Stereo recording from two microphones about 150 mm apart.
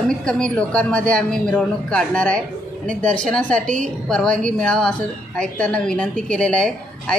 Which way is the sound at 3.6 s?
55° right (ahead or behind).